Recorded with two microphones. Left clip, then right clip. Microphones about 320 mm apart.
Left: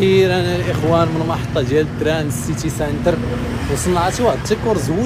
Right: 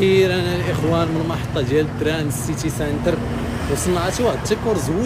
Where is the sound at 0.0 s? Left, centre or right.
Centre.